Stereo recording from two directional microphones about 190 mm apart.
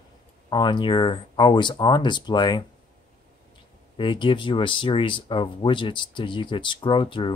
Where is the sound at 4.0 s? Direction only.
25° left (ahead or behind).